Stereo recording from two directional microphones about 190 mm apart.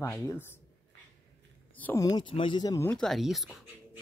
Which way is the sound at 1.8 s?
15° left (ahead or behind).